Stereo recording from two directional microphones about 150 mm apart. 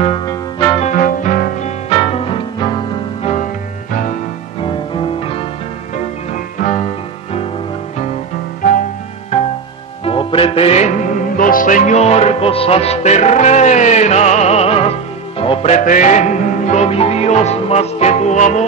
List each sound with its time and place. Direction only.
0.7 s music: 60° left (ahead or behind)
1.9 s music: 40° left (ahead or behind)
3.9 s music: 60° left (ahead or behind)
4.6 s music: 35° left (ahead or behind)
6.3 s music: 55° left (ahead or behind)
10.0 s music: 35° left (ahead or behind); by 18.6 s 55° left (ahead or behind)